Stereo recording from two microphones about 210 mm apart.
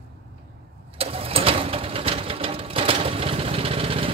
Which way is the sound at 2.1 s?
25° right (ahead or behind).